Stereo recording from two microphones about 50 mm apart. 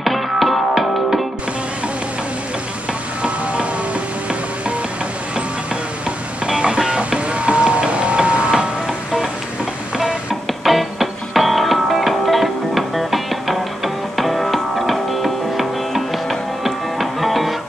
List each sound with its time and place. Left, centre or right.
0.0 s music: centre
2.9 s music: right
6.0 s music: centre
10.6 s music: centre